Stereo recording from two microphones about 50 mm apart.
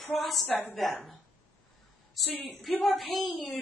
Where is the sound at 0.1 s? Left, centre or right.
Centre.